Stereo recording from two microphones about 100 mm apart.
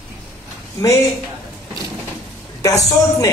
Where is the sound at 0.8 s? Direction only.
35° left (ahead or behind).